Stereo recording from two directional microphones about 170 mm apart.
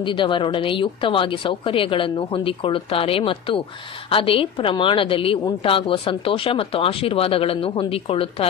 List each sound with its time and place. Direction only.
0.0 s a woman's voice: 30° left (ahead or behind)